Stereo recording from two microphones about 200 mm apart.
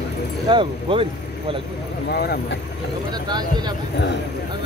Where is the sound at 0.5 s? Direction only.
25° right (ahead or behind).